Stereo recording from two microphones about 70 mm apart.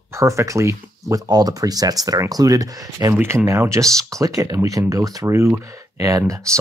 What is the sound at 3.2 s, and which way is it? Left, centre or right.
Speech, right.